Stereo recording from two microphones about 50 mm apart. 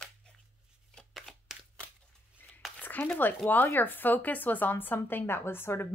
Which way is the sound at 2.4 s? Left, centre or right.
Left.